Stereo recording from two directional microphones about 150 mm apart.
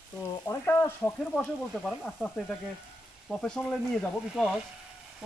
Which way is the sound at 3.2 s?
5° left (ahead or behind).